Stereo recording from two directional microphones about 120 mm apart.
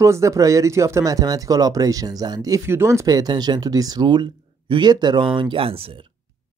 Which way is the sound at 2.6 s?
20° right (ahead or behind).